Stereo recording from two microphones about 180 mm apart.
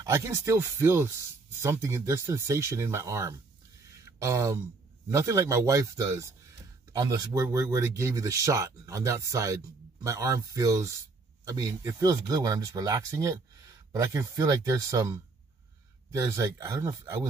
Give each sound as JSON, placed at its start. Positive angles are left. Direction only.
{"t": 0.0, "sound": "speech", "side_deg": -15}
{"t": 4.0, "sound": "a sound", "side_deg": -15}
{"t": 5.1, "sound": "speech", "side_deg": -15}